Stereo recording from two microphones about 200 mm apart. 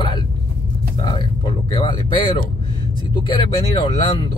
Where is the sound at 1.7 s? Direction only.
25° left (ahead or behind).